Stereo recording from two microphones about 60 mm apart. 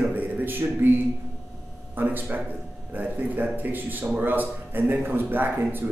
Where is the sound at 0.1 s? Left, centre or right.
Right.